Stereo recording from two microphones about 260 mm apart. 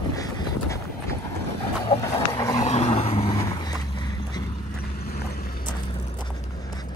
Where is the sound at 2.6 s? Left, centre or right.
Left.